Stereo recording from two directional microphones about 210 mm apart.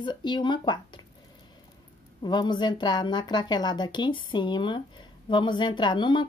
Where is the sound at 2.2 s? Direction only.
20° left (ahead or behind).